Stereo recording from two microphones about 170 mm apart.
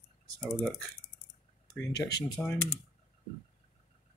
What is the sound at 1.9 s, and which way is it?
Speech, 20° left (ahead or behind).